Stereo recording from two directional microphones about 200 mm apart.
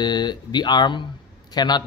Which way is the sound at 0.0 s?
20° left (ahead or behind).